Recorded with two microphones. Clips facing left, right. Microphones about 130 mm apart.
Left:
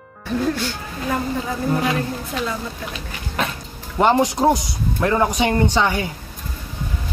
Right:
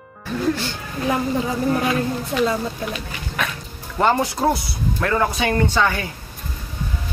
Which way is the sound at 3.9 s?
15° left (ahead or behind).